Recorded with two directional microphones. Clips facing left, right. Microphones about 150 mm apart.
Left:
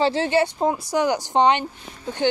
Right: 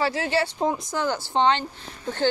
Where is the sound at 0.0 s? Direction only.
25° left (ahead or behind).